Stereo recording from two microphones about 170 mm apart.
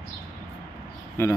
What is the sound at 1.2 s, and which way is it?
Speech, 15° left (ahead or behind).